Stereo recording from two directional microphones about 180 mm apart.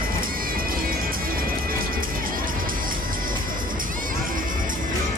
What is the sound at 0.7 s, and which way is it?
Music, 55° right (ahead or behind).